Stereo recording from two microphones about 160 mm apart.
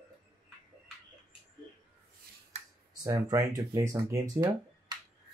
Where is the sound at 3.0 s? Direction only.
20° right (ahead or behind).